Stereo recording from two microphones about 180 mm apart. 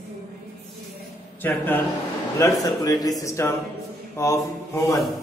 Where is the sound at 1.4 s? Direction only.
10° left (ahead or behind).